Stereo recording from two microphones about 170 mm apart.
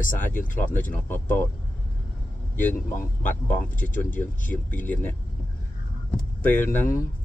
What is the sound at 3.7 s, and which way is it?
Speech, 50° left (ahead or behind).